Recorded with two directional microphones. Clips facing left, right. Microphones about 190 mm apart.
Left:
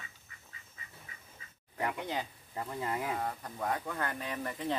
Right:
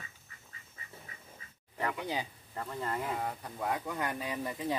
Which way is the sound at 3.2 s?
10° right (ahead or behind).